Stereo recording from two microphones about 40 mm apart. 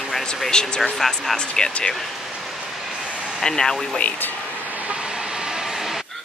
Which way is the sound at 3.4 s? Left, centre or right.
Centre.